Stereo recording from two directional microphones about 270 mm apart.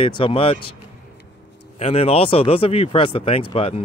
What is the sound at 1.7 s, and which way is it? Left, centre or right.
Speech, left.